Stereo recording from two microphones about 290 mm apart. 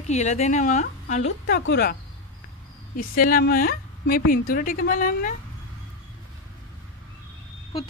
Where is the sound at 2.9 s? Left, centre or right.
Left.